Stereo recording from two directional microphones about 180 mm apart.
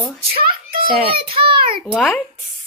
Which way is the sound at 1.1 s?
30° right (ahead or behind).